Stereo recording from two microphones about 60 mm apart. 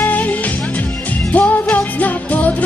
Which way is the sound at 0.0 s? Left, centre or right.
Left.